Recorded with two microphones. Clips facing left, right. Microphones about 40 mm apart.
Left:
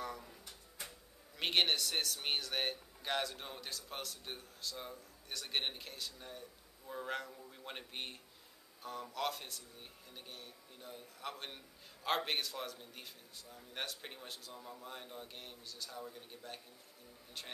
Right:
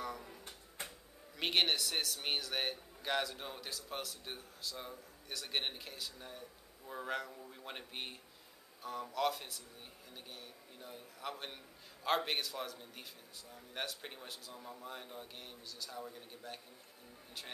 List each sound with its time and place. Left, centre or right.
0.0 s drawer open or close: centre
0.8 s a sound: right
1.4 s speech: centre